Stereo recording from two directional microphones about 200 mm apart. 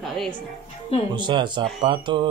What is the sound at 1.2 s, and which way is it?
Speech, 20° right (ahead or behind).